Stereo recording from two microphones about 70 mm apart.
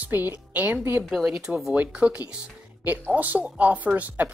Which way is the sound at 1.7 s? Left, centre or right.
Right.